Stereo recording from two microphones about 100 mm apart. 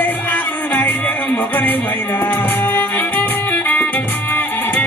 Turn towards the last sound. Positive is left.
turn(degrees=15)  # may be behind; listen again after turning